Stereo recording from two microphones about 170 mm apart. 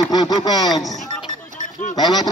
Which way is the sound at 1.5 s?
45° left (ahead or behind).